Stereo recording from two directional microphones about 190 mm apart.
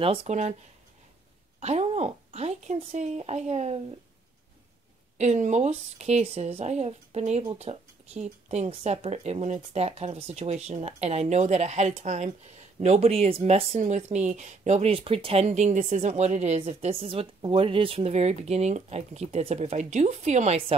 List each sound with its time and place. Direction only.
0.0 s speech: 30° right (ahead or behind)
1.6 s speech: 35° right (ahead or behind)
5.1 s speech: 35° right (ahead or behind)